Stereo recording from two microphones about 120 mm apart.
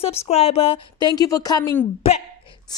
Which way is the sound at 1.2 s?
30° left (ahead or behind).